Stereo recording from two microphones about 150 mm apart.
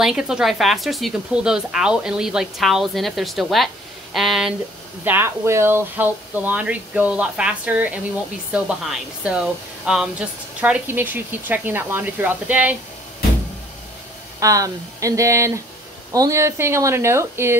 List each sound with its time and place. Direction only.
0.0 s speech: 5° right (ahead or behind)
5.0 s speech: 15° right (ahead or behind)
14.4 s speech: 20° right (ahead or behind)